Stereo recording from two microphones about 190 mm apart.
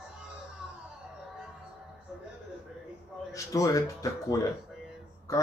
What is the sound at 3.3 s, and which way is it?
Speech, 15° left (ahead or behind).